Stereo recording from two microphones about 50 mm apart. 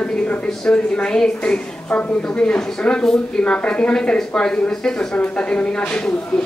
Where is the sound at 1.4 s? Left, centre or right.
Left.